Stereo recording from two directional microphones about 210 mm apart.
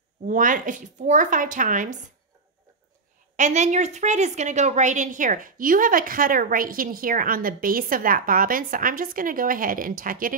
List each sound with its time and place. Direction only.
0.3 s a woman's voice: 40° right (ahead or behind)
3.3 s a woman's voice: 35° right (ahead or behind)